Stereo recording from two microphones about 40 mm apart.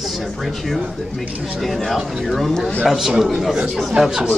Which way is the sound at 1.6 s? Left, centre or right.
Centre.